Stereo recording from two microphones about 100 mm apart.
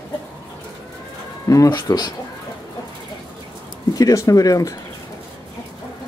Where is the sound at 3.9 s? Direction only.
35° left (ahead or behind).